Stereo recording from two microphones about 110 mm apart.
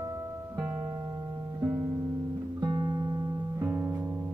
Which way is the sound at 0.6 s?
20° right (ahead or behind).